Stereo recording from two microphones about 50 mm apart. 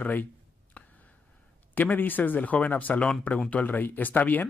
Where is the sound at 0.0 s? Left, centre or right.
Left.